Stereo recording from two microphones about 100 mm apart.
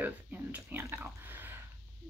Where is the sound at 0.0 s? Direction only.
20° right (ahead or behind).